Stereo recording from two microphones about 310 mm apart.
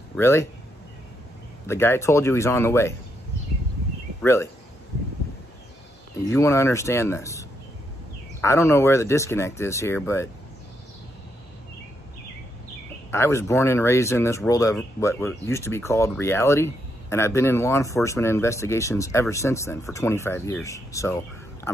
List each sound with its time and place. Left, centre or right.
0.1 s a man's voice: centre
1.7 s speech: centre
4.2 s speech: centre
6.2 s speech: centre
13.1 s speech: centre